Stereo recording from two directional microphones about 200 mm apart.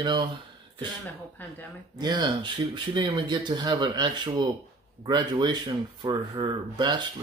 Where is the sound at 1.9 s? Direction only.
20° right (ahead or behind).